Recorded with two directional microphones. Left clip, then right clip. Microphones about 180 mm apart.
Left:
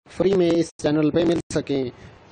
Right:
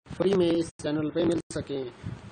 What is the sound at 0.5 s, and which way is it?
Speech, 40° left (ahead or behind).